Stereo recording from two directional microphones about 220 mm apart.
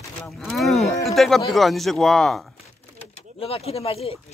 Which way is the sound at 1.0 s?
Centre (ahead or behind).